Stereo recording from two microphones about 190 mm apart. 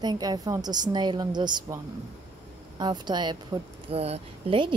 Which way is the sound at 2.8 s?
25° right (ahead or behind).